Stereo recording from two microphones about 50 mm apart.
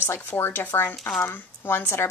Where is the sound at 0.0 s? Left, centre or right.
Left.